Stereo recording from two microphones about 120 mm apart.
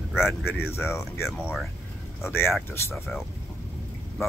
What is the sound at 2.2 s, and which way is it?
Speech, 20° left (ahead or behind).